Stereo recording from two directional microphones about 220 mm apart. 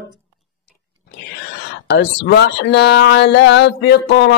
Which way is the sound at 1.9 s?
50° left (ahead or behind).